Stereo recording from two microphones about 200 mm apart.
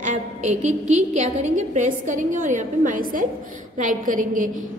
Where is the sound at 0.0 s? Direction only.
40° right (ahead or behind).